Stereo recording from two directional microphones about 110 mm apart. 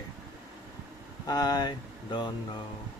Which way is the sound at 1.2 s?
35° left (ahead or behind).